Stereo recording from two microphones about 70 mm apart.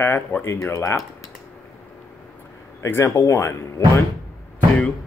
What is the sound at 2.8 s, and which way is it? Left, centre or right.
Speech, left.